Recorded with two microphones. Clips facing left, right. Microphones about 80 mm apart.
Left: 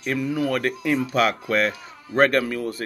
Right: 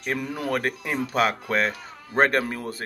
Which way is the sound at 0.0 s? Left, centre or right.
Right.